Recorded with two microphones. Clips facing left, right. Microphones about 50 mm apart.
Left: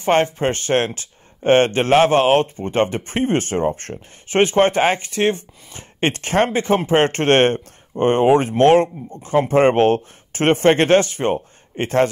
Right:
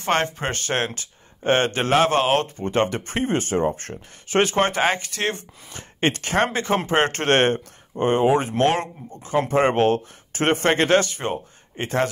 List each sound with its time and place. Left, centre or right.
0.0 s speech: left
3.2 s speech: left
3.9 s speech: centre; by 12.1 s left